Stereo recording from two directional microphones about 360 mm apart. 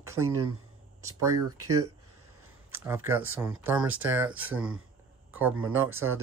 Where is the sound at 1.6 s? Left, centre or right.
Right.